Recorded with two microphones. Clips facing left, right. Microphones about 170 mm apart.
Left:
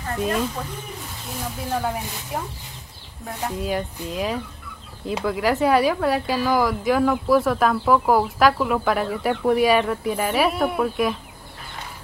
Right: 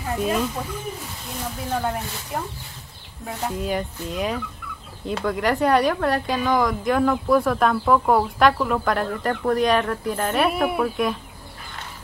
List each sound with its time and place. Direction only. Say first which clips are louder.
0.0 s a woman's voice: right 1 dB; 5° right (ahead or behind)
3.4 s a woman's voice: even; centre (ahead or behind)